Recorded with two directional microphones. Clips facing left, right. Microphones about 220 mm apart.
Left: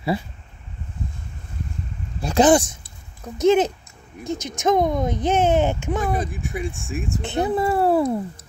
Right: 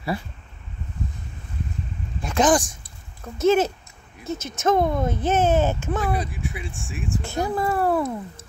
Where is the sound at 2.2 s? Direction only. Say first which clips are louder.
Left 4 dB; 30° left (ahead or behind).